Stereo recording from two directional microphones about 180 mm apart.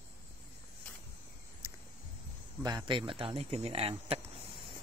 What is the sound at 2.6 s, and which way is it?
Speech, 20° right (ahead or behind).